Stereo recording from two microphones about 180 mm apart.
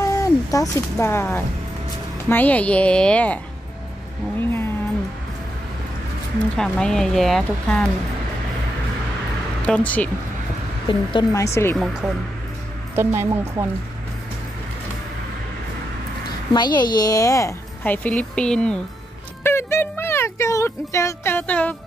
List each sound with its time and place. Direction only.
0.0 s a woman's voice: 20° left (ahead or behind)
6.5 s speech: 5° left (ahead or behind)
9.6 s speech: 5° left (ahead or behind)
10.9 s a woman's voice: 20° left (ahead or behind)
11.7 s speech: centre (ahead or behind)
12.9 s speech: 15° right (ahead or behind)
16.5 s a woman's voice: 25° left (ahead or behind); by 18.8 s 5° left (ahead or behind)
19.4 s a sound: 15° left (ahead or behind)